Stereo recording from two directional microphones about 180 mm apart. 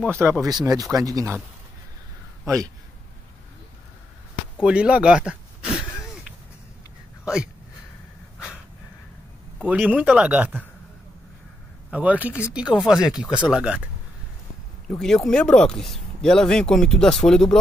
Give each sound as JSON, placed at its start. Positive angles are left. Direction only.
{"t": 0.0, "sound": "a man's voice", "side_deg": -15}
{"t": 2.4, "sound": "speech", "side_deg": -20}
{"t": 4.6, "sound": "a sound", "side_deg": -5}
{"t": 9.6, "sound": "a man's voice", "side_deg": -10}
{"t": 11.9, "sound": "a man's voice", "side_deg": -10}
{"t": 14.9, "sound": "speech", "side_deg": 5}